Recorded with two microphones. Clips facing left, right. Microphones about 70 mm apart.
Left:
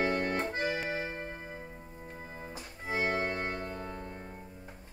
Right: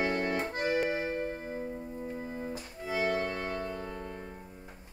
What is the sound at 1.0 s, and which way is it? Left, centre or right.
Music, left.